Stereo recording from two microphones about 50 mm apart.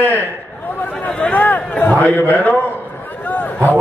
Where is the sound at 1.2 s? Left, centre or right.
Left.